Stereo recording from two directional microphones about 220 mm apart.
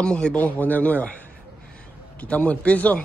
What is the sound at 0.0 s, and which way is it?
Speech, 5° left (ahead or behind).